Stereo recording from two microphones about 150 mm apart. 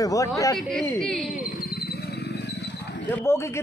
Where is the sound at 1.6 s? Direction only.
90° left.